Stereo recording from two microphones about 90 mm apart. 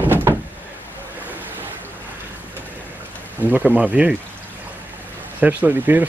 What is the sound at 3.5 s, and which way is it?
Speech, 15° right (ahead or behind).